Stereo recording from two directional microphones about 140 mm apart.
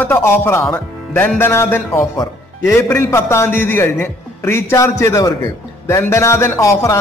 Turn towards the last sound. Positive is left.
turn(degrees=25)  # may be behind; listen again after turning